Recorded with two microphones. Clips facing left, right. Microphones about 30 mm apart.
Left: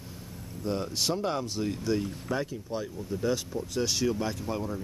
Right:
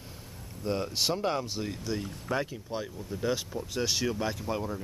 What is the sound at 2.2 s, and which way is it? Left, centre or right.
Speech, centre.